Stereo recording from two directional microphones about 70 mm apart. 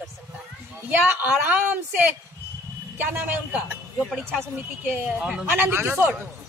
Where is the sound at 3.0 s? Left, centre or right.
Right.